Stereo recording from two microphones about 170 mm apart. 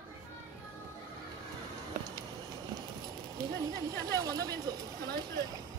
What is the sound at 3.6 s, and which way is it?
Speech, 20° right (ahead or behind).